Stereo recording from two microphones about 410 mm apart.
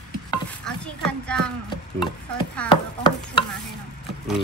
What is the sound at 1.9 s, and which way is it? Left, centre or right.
Stir, centre.